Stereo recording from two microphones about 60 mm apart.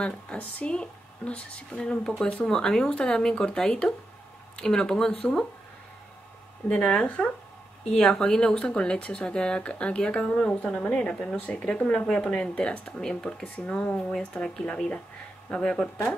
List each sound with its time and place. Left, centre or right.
0.0 s speech: left
6.7 s speech: centre
15.5 s speech: centre